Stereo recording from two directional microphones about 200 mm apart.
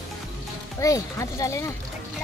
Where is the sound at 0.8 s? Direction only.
15° left (ahead or behind).